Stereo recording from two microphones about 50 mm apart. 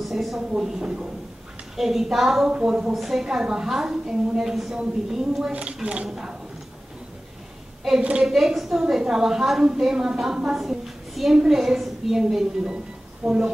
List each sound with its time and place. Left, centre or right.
0.0 s speech: centre
0.5 s a woman's voice: centre
2.5 s a woman's voice: centre
2.9 s a woman's voice: centre
5.5 s a woman's voice: right
6.0 s a woman's voice: centre
8.0 s a woman's voice: right
8.3 s a woman's voice: centre